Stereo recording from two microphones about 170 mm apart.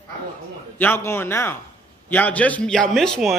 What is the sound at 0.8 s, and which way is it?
A man's voice, 15° left (ahead or behind).